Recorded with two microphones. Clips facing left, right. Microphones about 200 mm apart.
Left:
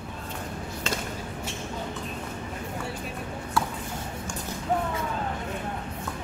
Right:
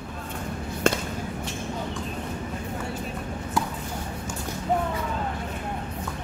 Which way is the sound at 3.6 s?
15° right (ahead or behind).